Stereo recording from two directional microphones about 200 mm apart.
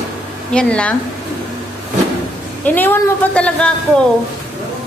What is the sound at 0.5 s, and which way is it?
Speech, 5° left (ahead or behind).